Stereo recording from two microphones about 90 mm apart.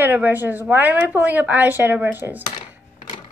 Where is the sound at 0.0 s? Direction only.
20° right (ahead or behind).